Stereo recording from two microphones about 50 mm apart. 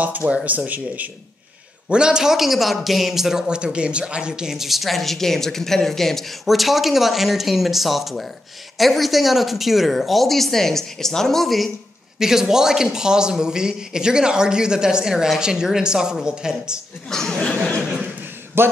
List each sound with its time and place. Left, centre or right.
0.0 s speech: right
1.9 s speech: centre
3.4 s speech: centre
17.1 s speech: centre
18.6 s speech: right